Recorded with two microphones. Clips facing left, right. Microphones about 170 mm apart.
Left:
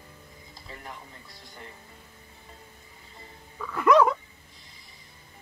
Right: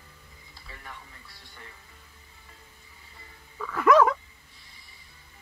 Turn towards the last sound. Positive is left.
turn(degrees=0)  # may be behind; listen again after turning